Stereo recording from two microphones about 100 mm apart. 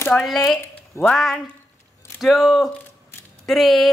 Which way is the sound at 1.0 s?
25° left (ahead or behind).